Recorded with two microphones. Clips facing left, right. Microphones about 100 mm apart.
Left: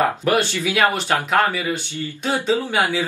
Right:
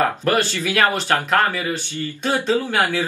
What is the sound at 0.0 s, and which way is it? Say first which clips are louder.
Speech: even; 15° left (ahead or behind).